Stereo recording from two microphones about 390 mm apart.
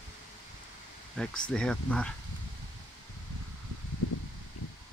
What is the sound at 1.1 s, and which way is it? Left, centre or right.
Speech, centre.